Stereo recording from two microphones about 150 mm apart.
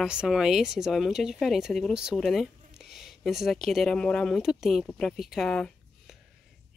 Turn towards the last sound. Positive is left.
turn(degrees=5)  # may be behind; listen again after turning